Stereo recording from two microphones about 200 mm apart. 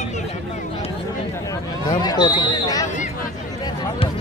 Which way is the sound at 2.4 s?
20° left (ahead or behind).